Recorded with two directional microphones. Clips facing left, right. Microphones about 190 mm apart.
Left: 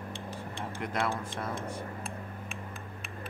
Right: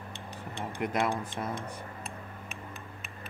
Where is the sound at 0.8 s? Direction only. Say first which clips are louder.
Right 3 dB; 15° right (ahead or behind).